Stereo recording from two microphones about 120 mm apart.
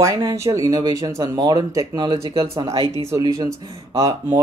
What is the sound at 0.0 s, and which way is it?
Speech, 30° right (ahead or behind).